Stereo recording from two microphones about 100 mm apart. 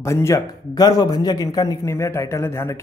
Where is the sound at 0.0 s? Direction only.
30° left (ahead or behind).